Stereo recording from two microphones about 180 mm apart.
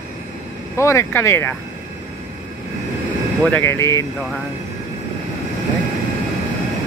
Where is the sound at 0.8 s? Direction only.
15° left (ahead or behind).